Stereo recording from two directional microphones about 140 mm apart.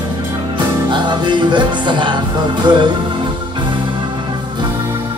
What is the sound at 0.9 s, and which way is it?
Music, 30° right (ahead or behind).